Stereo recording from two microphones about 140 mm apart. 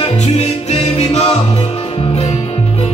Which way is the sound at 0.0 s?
45° left (ahead or behind).